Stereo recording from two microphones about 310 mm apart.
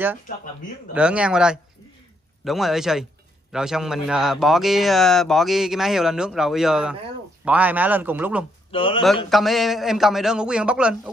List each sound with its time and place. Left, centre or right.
0.9 s speech: centre
8.7 s a man's voice: centre
9.3 s speech: centre